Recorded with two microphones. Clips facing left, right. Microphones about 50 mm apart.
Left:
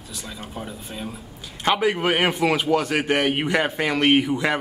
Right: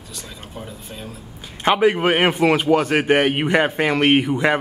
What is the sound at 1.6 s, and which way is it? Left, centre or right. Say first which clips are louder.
A man's voice: right 4 dB; centre.